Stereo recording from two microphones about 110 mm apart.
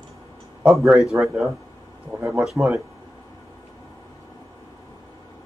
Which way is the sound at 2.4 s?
Centre (ahead or behind).